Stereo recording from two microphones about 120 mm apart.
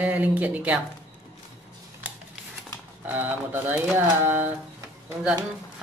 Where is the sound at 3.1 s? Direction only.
15° right (ahead or behind).